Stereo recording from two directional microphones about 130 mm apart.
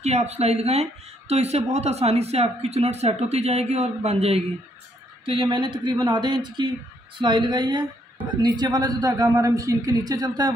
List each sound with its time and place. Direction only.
0.0 s speech: 55° right (ahead or behind)
5.2 s a man's voice: 40° right (ahead or behind)